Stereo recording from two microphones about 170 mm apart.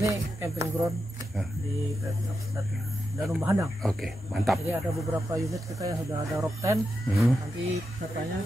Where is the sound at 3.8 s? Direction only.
Centre (ahead or behind).